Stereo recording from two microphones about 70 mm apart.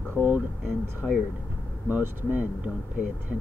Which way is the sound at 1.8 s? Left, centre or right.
Right.